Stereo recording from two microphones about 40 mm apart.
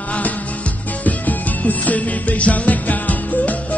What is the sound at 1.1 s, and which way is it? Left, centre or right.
Music, left.